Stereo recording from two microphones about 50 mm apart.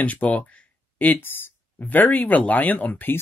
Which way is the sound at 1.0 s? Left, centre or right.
Left.